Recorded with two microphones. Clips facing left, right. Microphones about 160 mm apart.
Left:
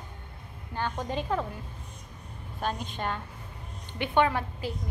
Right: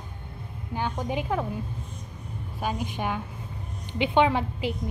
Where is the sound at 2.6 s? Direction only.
10° right (ahead or behind).